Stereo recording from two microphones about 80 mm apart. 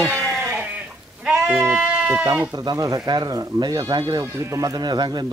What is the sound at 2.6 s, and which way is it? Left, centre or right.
Speech, right.